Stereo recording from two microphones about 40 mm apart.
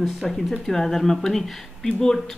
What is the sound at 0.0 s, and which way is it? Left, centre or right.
Speech, centre.